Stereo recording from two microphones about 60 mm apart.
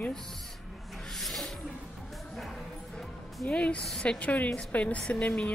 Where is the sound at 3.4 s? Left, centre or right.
Centre.